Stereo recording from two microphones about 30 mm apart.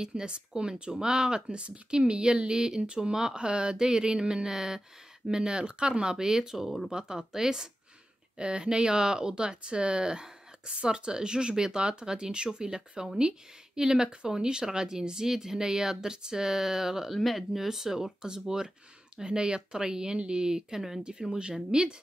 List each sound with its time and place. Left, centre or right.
0.0 s speech: right
8.4 s speech: right; by 17.1 s centre
17.1 s speech: centre
17.6 s speech: centre
19.1 s speech: right